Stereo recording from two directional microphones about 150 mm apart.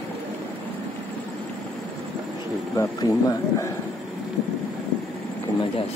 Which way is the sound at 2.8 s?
20° left (ahead or behind).